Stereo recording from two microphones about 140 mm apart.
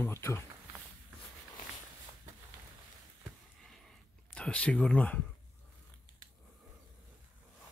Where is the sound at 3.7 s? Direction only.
5° left (ahead or behind).